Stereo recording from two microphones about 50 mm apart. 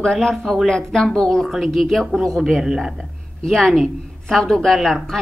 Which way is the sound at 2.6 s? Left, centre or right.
Centre.